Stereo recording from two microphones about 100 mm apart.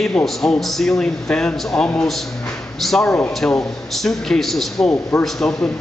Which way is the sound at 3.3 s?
5° left (ahead or behind).